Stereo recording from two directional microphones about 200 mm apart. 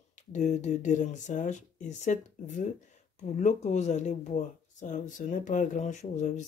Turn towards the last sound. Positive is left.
turn(degrees=35)  # may be behind; listen again after turning